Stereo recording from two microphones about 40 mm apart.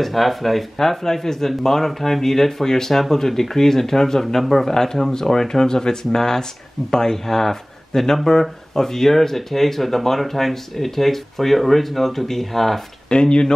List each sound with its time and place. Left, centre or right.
0.0 s speech: centre
13.1 s speech: left